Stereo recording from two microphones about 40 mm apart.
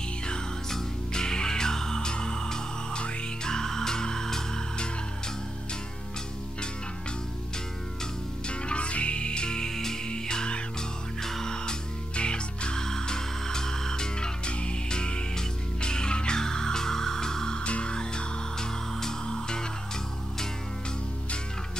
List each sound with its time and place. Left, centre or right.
0.7 s music: centre
8.5 s music: left
11.2 s music: centre
12.2 s music: left
17.6 s music: left